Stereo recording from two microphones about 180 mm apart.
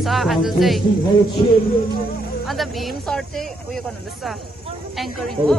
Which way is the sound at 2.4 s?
Centre (ahead or behind).